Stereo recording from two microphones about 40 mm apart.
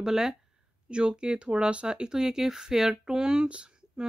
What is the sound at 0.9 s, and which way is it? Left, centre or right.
Speech, right.